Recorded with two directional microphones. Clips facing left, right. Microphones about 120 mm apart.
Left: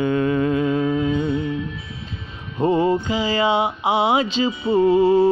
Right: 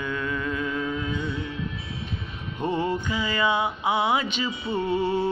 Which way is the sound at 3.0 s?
90° left.